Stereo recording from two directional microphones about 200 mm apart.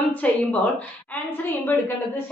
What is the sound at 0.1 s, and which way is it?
A woman's voice, 10° left (ahead or behind).